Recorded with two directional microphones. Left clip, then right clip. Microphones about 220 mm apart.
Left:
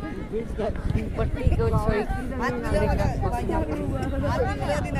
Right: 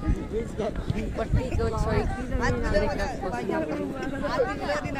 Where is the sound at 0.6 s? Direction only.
45° left (ahead or behind).